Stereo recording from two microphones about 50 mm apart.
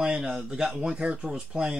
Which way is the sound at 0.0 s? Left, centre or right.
Centre.